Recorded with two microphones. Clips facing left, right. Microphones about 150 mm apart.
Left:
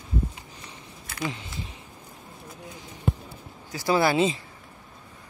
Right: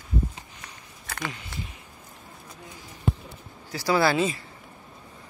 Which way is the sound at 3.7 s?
20° left (ahead or behind).